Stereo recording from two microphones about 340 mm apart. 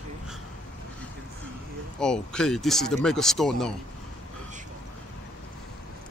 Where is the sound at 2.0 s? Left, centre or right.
Centre.